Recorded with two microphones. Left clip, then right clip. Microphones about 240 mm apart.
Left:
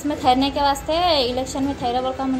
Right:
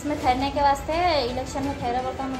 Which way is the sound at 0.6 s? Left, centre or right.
Left.